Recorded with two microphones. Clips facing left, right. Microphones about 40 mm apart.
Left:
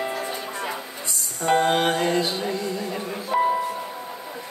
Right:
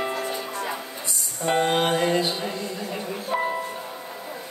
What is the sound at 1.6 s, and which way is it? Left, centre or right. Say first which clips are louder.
Music: left 1 dB; centre.